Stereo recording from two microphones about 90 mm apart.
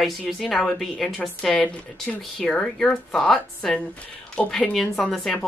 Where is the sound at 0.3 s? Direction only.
Centre (ahead or behind).